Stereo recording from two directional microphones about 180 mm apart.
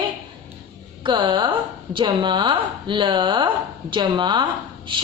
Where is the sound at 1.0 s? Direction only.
25° right (ahead or behind).